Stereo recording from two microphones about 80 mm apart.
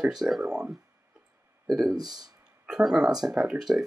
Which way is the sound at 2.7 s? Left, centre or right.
Centre.